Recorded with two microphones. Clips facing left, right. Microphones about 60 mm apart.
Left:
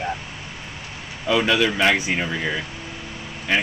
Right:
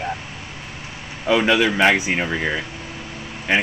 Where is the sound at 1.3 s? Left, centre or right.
Centre.